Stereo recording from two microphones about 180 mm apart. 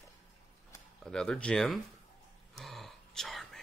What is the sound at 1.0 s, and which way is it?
Speech, 5° left (ahead or behind).